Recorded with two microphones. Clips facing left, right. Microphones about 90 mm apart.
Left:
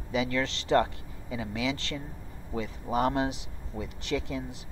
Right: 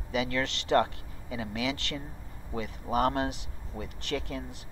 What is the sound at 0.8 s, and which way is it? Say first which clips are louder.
Speech: even; centre (ahead or behind).